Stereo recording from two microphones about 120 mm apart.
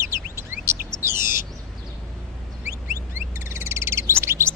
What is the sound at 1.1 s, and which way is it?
Bird, 20° right (ahead or behind).